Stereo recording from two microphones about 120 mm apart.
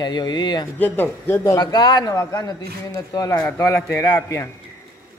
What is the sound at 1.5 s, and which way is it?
A man's voice, 35° left (ahead or behind).